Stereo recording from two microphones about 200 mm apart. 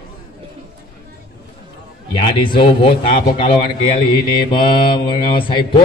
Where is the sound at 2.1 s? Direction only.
25° left (ahead or behind).